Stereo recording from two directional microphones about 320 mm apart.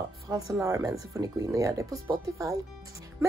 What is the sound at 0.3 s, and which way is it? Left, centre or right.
Speech, centre.